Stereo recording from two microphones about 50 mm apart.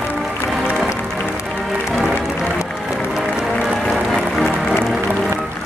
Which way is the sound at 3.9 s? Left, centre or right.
Centre.